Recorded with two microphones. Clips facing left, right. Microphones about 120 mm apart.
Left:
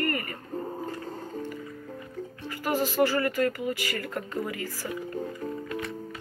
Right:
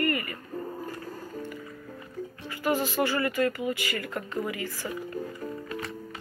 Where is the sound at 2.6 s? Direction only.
40° left (ahead or behind).